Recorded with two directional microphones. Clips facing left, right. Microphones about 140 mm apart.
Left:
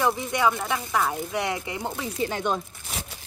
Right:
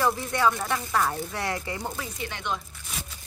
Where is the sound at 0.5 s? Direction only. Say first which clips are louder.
Left 1 dB; 5° left (ahead or behind); by 2.2 s 25° left (ahead or behind).